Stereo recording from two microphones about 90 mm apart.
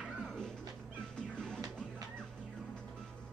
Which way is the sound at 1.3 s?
10° left (ahead or behind).